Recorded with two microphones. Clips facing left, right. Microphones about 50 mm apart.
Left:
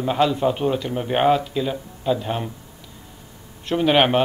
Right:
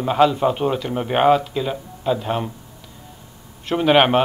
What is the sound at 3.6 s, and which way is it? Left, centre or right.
Speech, centre.